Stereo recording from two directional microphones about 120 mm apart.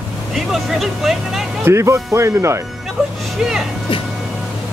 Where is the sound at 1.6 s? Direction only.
25° right (ahead or behind).